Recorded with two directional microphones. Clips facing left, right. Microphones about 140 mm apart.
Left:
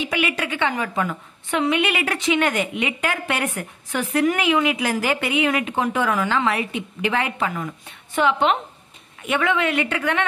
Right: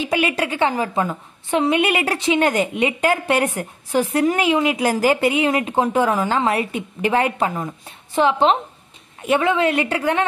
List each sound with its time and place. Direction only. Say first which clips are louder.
0.0 s a woman's voice: right 4 dB; 40° right (ahead or behind)
1.8 s a woman's voice: right 3 dB; 40° right (ahead or behind)